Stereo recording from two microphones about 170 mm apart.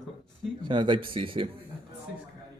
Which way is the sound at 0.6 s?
25° right (ahead or behind).